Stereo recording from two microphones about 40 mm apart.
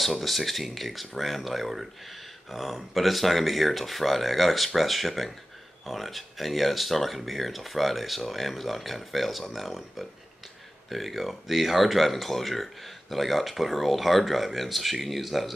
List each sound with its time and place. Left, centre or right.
0.0 s speech: centre